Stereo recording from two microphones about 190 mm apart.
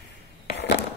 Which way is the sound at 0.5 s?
65° left (ahead or behind).